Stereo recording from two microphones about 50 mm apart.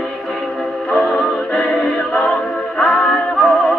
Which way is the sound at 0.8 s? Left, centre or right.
Centre.